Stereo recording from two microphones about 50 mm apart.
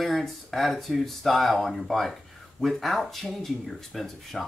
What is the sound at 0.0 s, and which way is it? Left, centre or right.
Speech, centre.